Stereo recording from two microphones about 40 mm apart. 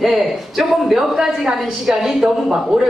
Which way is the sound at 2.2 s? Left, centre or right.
Centre.